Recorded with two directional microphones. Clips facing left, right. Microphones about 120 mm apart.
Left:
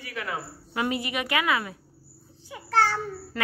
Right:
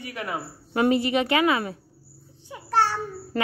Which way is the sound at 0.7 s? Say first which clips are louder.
Right 7 dB; 35° right (ahead or behind).